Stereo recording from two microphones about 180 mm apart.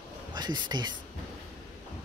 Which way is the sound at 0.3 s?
25° right (ahead or behind).